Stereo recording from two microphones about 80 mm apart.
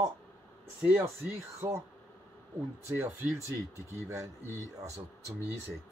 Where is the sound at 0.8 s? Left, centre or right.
Right.